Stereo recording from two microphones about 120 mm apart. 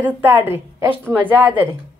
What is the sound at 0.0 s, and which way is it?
A woman's voice, 20° right (ahead or behind).